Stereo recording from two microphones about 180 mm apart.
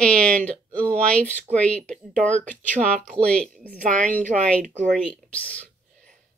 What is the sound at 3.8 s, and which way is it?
Speech, 45° right (ahead or behind).